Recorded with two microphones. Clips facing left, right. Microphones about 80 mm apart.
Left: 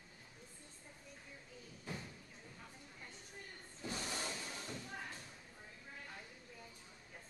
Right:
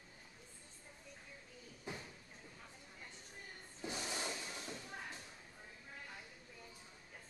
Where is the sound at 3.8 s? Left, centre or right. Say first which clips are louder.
Even; centre.